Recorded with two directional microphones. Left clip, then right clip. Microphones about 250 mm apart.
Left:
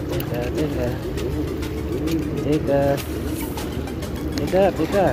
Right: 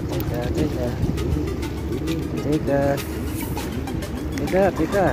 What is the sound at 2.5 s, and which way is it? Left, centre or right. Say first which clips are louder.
Music: left 1 dB; centre.